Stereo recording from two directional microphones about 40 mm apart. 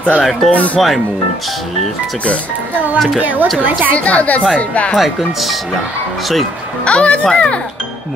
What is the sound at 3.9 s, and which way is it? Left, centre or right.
A woman's voice, left.